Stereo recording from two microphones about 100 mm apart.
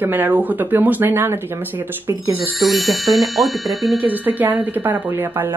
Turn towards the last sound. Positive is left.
turn(degrees=-20)  # may be behind; listen again after turning